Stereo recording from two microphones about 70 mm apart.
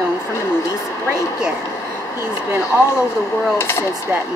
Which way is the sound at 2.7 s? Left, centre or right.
Right.